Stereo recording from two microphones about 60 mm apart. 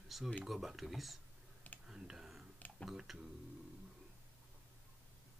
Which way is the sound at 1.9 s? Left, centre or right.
Centre.